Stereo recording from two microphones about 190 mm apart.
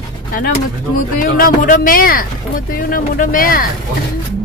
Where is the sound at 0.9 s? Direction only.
45° left (ahead or behind).